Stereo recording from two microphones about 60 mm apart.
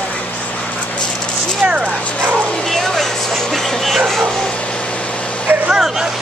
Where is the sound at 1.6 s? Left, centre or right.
Right.